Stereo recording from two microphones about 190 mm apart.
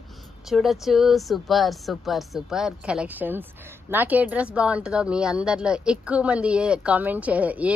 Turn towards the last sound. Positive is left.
turn(degrees=-10)  # may be behind; listen again after turning